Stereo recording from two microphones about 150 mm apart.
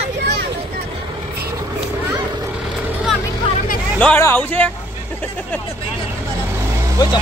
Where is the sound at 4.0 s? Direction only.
10° left (ahead or behind).